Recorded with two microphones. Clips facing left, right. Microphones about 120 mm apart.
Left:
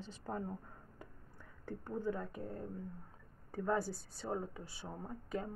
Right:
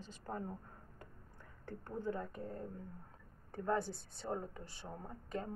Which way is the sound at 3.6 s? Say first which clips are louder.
Left 1 dB; 5° left (ahead or behind).